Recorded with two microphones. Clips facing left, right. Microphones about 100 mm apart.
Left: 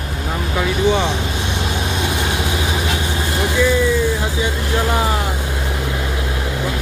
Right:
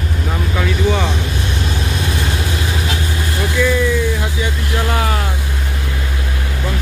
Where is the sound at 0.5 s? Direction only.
15° left (ahead or behind).